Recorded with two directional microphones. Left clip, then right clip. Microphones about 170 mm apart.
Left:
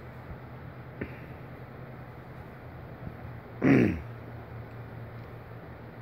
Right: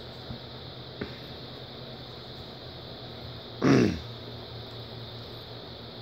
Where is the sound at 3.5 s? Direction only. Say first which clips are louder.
Right 1 dB; 5° right (ahead or behind).